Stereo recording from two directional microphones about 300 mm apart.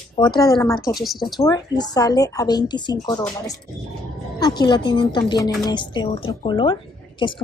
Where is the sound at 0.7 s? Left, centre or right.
Left.